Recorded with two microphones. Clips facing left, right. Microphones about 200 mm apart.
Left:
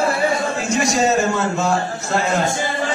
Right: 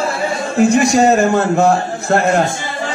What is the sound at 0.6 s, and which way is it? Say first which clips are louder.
A man's voice: right 11 dB; 60° right (ahead or behind).